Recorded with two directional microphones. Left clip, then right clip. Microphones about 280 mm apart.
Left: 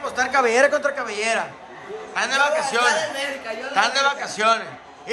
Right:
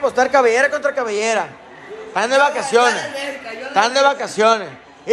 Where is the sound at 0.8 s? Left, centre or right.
Centre.